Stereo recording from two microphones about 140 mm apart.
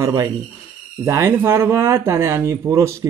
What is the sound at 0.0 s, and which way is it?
A man's voice, 25° right (ahead or behind).